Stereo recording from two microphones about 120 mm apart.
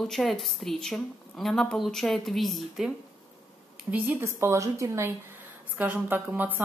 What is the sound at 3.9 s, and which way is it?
A woman's voice, 15° right (ahead or behind).